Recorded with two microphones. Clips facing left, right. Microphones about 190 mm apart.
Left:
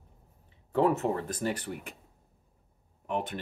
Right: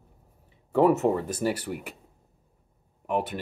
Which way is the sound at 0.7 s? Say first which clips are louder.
Right 5 dB; 10° right (ahead or behind).